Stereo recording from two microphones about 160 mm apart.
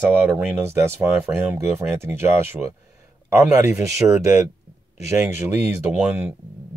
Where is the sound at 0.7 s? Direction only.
15° right (ahead or behind).